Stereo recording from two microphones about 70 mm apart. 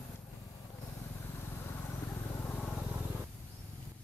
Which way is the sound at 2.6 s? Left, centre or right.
Centre.